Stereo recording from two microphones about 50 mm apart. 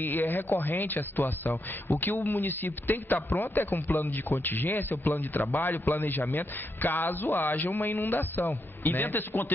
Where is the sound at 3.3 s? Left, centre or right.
Left.